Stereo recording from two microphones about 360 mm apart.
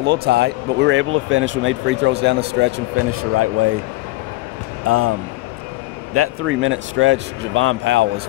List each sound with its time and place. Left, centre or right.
0.0 s speech: right
4.8 s speech: right
6.1 s speech: right